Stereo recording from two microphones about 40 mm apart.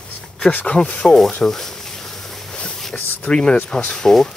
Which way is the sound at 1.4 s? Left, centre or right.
Centre.